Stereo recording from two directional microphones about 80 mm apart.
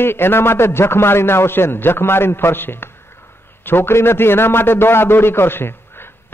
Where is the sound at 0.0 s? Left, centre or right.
Left.